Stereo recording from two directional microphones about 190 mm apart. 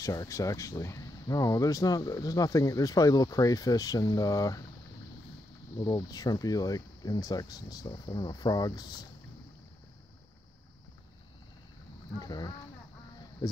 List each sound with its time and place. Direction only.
0.0 s speech: 20° left (ahead or behind)
5.8 s speech: 20° left (ahead or behind)
12.2 s speech: 20° left (ahead or behind)